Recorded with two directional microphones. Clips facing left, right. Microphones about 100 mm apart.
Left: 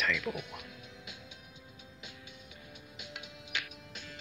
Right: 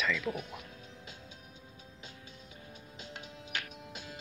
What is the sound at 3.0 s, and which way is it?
Music, 35° right (ahead or behind).